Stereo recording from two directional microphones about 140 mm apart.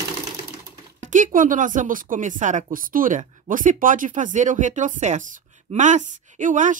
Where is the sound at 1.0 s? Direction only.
65° right (ahead or behind).